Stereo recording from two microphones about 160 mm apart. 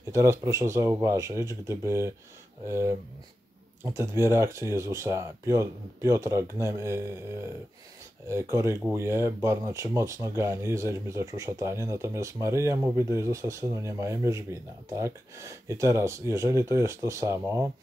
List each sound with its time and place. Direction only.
0.1 s speech: 20° right (ahead or behind)
8.3 s speech: 20° right (ahead or behind)